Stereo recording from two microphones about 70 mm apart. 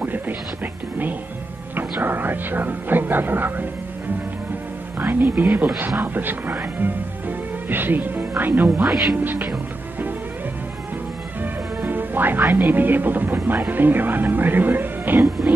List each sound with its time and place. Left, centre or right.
0.0 s music: right
1.8 s speech: right
4.9 s speech: right
8.8 s speech: centre
9.1 s speech: right
11.8 s speech: right